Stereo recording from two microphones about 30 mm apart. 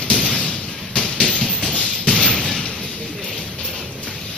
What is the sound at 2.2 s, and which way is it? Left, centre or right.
Thump, left.